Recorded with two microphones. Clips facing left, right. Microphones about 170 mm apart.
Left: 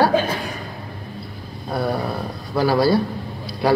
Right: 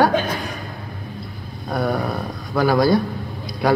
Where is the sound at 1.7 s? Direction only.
5° left (ahead or behind).